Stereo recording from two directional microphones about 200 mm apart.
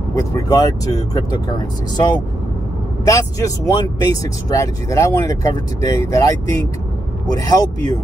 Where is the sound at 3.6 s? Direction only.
20° left (ahead or behind).